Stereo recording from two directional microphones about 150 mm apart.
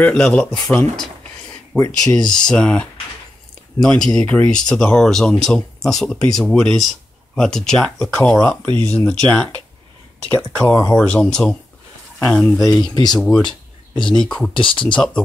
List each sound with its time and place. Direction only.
0.0 s speech: 10° left (ahead or behind)
1.7 s speech: 5° right (ahead or behind)
12.5 s speech: 25° left (ahead or behind)
13.1 s speech: 5° left (ahead or behind)